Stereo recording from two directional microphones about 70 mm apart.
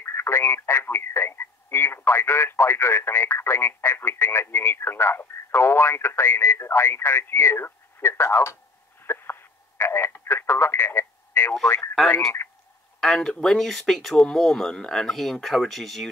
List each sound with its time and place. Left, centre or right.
0.0 s speech: left
9.0 s telephone: left
11.6 s speech: left
12.4 s a sound: left
13.0 s speech: centre